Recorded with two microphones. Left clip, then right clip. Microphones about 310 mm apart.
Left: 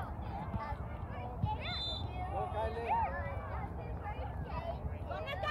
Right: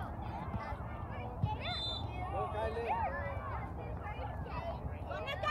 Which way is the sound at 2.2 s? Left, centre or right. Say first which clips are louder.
Even; left.